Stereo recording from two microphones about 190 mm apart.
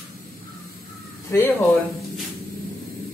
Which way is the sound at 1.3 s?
15° left (ahead or behind).